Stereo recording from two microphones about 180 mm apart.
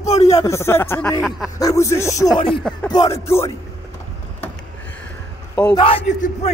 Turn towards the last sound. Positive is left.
turn(degrees=40)  # may be behind; listen again after turning